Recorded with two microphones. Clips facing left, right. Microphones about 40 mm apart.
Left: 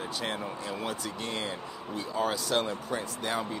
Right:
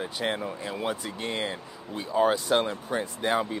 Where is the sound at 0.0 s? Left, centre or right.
Right.